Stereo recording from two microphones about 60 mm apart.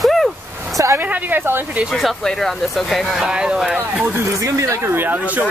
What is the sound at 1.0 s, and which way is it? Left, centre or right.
Speech, right.